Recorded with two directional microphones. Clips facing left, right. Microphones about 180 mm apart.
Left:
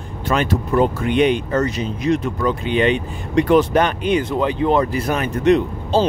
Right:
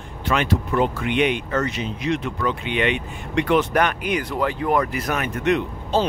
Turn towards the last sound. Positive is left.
turn(degrees=35)  # may be behind; listen again after turning